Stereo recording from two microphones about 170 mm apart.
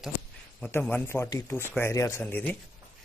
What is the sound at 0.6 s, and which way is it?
Speech, 10° left (ahead or behind).